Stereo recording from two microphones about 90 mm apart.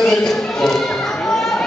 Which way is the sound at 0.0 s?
5° left (ahead or behind).